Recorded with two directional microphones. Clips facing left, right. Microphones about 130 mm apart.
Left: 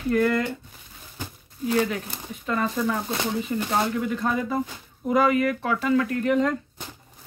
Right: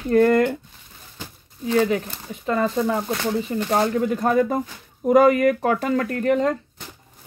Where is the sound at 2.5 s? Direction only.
30° right (ahead or behind).